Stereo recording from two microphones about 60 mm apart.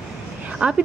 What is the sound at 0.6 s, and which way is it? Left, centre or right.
Speech, right.